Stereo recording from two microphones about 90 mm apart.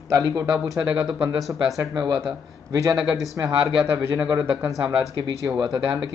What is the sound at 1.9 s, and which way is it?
Speech, 50° right (ahead or behind).